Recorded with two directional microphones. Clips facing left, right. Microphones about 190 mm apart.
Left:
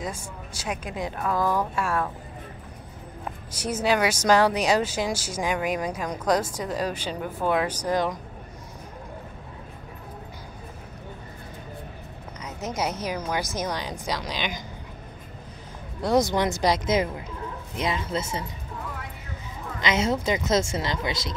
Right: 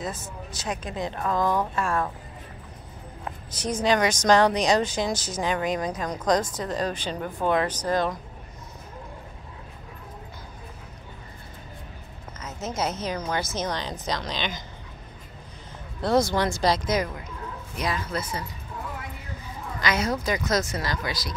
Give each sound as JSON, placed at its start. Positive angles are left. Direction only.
{"t": 0.0, "sound": "a woman's voice", "side_deg": 10}
{"t": 3.5, "sound": "a woman's voice", "side_deg": 10}
{"t": 12.4, "sound": "a woman's voice", "side_deg": 15}
{"t": 16.0, "sound": "speech", "side_deg": 15}
{"t": 19.8, "sound": "speech", "side_deg": 25}